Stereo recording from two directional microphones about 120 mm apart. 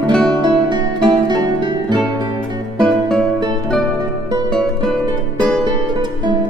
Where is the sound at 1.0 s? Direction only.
35° right (ahead or behind).